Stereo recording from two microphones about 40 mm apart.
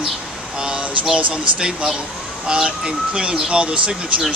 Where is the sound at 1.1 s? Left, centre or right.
Right.